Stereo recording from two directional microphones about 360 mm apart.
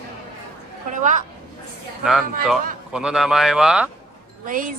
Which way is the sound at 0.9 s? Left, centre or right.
Right.